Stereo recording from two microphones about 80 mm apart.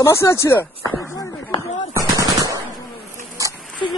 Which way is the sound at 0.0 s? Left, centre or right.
Left.